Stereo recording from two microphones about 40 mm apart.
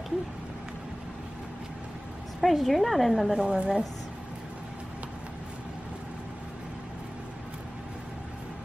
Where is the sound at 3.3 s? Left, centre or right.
Right.